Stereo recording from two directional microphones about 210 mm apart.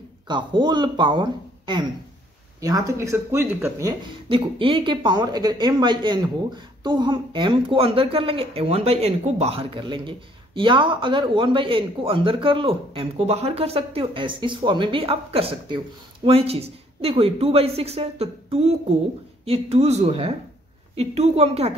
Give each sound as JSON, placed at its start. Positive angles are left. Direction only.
{"t": 0.3, "sound": "speech", "side_deg": -20}